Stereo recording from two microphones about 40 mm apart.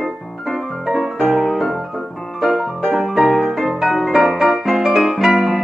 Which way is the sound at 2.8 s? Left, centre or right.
Centre.